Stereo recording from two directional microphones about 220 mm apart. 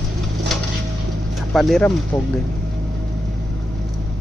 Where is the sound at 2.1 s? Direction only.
15° left (ahead or behind).